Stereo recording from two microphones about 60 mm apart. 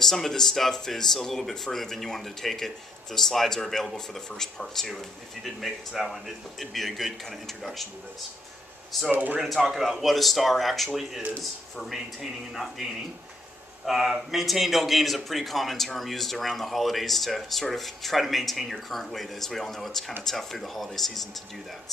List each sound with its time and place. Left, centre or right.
0.0 s speech: centre
9.1 s speech: right
9.4 s speech: centre
13.8 s speech: centre